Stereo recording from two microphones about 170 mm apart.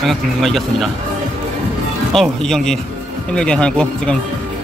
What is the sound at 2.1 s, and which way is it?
Speech, centre (ahead or behind).